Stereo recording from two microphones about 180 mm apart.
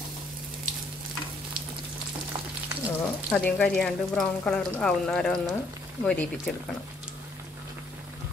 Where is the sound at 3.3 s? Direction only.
5° left (ahead or behind).